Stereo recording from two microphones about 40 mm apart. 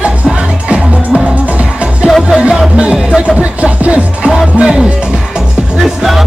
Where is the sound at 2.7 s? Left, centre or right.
Right.